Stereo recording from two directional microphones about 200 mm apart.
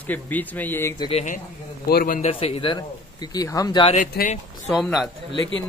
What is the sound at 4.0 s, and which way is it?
Speech, 40° left (ahead or behind).